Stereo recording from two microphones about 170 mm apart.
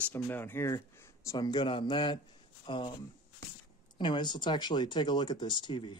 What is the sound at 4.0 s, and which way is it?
Speech, 25° left (ahead or behind).